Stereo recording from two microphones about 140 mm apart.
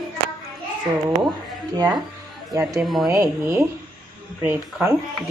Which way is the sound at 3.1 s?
15° right (ahead or behind).